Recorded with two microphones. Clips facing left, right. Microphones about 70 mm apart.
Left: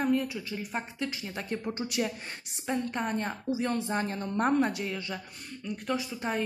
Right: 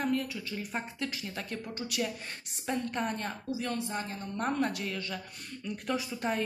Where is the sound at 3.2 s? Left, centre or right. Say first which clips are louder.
Left 4 dB; left.